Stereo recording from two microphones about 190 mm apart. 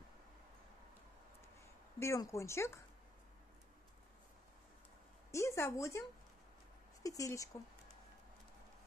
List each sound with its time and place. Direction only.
2.0 s speech: 15° left (ahead or behind)
5.3 s speech: 15° left (ahead or behind)